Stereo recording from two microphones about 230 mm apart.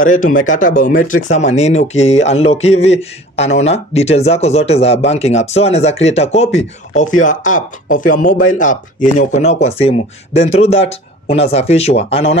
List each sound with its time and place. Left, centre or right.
0.0 s speech: left